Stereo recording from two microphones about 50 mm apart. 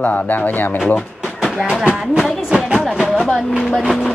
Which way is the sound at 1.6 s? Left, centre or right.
Right.